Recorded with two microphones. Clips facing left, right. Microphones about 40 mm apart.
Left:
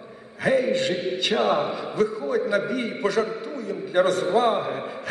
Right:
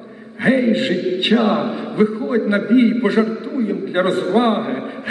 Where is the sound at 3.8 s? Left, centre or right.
Right.